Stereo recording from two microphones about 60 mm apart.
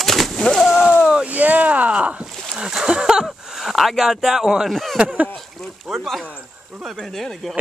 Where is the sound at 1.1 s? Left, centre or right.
Right.